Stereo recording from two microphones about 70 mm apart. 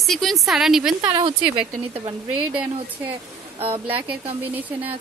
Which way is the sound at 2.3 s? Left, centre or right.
Right.